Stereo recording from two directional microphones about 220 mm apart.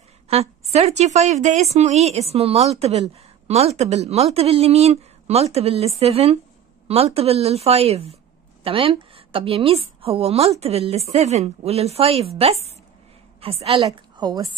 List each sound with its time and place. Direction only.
0.3 s a woman's voice: 30° right (ahead or behind)